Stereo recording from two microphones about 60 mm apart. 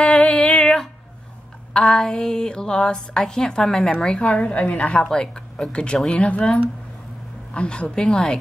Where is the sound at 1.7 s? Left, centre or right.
Centre.